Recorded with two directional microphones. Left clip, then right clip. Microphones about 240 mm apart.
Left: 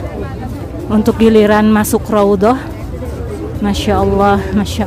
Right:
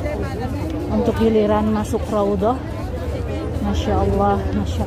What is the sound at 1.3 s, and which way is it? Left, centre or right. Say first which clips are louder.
Speech: left 11 dB; left.